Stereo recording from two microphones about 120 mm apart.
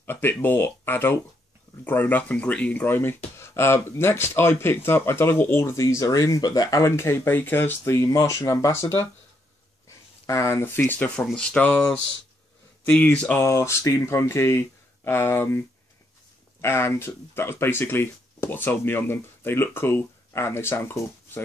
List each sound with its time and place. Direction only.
0.0 s speech: 15° left (ahead or behind)
13.4 s speech: 25° left (ahead or behind)
16.6 s speech: 20° left (ahead or behind)